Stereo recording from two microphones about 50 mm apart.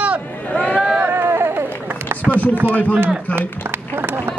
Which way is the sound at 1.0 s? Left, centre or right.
Right.